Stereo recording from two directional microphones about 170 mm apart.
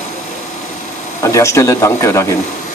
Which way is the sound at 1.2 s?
15° left (ahead or behind).